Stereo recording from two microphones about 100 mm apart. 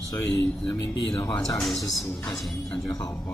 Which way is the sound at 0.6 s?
40° left (ahead or behind).